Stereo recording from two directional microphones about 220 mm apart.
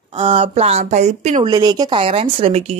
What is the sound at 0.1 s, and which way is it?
Speech, 25° right (ahead or behind).